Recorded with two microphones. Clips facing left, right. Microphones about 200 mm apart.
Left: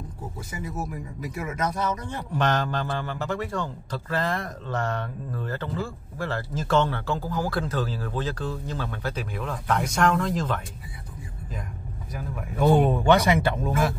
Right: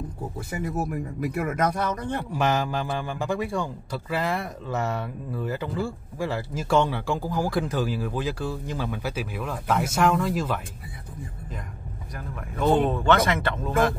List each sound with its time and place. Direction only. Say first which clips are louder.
0.5 s speech: right 5 dB; 60° right (ahead or behind)
2.3 s a man's voice: left 1 dB; 10° right (ahead or behind)
12.1 s speech: left 3 dB; 5° left (ahead or behind)